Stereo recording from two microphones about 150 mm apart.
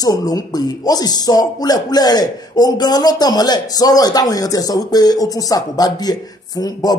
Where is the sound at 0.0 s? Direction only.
25° left (ahead or behind).